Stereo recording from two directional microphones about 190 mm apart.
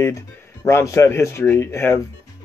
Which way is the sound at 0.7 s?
15° left (ahead or behind).